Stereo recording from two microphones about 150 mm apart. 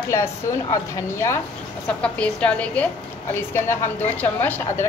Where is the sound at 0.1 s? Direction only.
20° left (ahead or behind).